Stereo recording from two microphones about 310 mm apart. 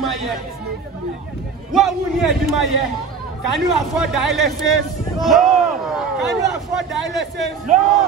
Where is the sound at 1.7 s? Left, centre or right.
Centre.